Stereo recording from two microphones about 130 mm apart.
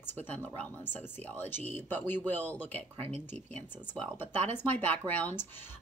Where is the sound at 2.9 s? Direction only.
50° right (ahead or behind).